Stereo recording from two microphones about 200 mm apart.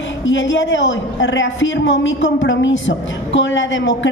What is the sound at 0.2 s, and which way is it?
A woman's voice, 70° left (ahead or behind).